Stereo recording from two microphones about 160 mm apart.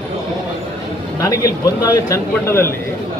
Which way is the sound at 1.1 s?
20° left (ahead or behind).